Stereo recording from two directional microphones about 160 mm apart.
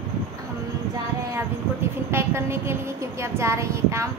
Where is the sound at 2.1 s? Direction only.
15° right (ahead or behind).